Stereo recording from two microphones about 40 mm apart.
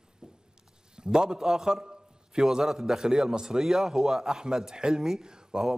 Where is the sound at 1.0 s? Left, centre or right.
Centre.